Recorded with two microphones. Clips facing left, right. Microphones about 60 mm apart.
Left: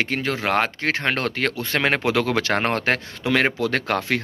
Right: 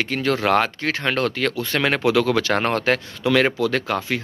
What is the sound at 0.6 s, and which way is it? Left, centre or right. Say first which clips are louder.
Speech: even; left.